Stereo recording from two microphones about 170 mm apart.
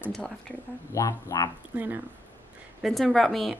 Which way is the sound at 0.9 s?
20° left (ahead or behind).